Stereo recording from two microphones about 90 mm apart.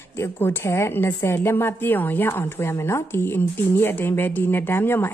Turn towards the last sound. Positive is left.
turn(degrees=25)  # may be behind; listen again after turning